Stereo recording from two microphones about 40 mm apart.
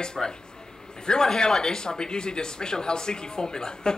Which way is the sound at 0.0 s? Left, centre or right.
Centre.